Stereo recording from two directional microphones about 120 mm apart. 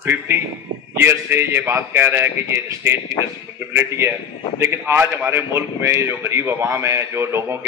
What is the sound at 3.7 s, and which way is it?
A man's voice, 20° right (ahead or behind).